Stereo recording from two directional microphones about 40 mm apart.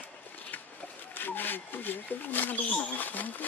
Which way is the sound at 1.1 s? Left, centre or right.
Left.